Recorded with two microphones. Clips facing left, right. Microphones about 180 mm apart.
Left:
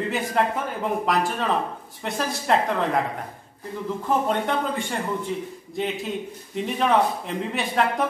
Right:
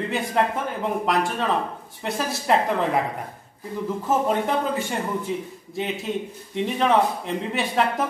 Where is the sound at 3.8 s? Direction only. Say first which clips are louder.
Right 1 dB; 5° right (ahead or behind).